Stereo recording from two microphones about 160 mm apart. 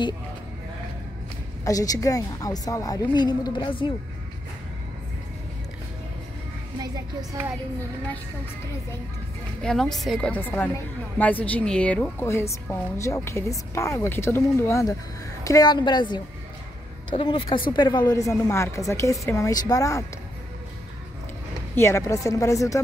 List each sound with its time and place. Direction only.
1.6 s a woman's voice: 20° left (ahead or behind)
6.8 s a child's voice: 20° right (ahead or behind)
9.6 s a woman's voice: 5° left (ahead or behind); by 20.1 s 20° left (ahead or behind)
21.7 s a woman's voice: 15° left (ahead or behind)